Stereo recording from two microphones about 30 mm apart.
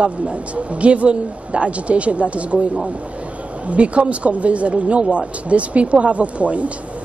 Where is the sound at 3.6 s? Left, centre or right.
Right.